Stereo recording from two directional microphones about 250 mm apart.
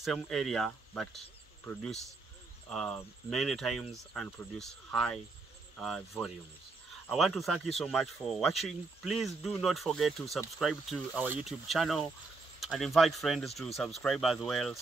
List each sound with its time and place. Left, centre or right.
0.0 s speech: centre
2.7 s speech: centre